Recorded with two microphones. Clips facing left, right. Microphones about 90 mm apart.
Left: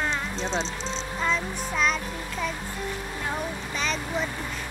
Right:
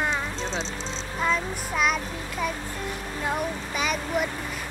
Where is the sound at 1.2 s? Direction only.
5° right (ahead or behind).